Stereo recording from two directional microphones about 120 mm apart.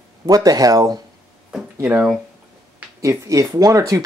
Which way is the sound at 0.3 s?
30° right (ahead or behind).